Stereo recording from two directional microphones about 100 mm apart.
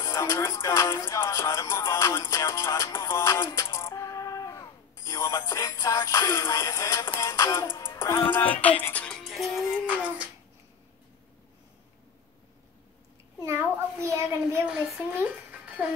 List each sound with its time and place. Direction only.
0.0 s music: 30° left (ahead or behind)
8.3 s music: 15° left (ahead or behind)
9.1 s music: centre (ahead or behind)
10.0 s babbling: 15° right (ahead or behind)
13.4 s a child's voice: 30° right (ahead or behind)
14.7 s speech: 5° right (ahead or behind)